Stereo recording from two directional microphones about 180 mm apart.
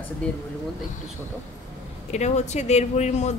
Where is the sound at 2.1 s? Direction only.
40° left (ahead or behind).